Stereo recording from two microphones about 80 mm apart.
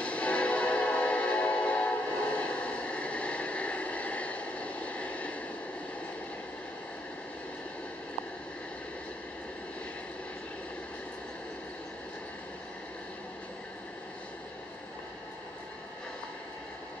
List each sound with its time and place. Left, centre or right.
0.0 s train: centre